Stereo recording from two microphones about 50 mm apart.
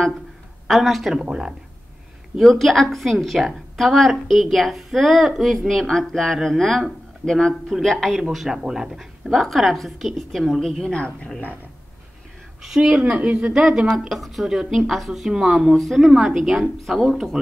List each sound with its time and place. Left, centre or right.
0.7 s a woman's voice: centre
1.1 s speech: centre
2.3 s a woman's voice: centre
8.6 s speech: centre
9.3 s a woman's voice: centre
10.9 s a woman's voice: left
12.6 s speech: centre
13.1 s speech: right
15.7 s a woman's voice: centre
16.1 s a woman's voice: centre